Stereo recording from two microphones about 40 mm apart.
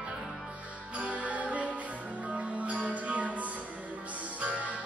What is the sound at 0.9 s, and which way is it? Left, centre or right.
Music, right.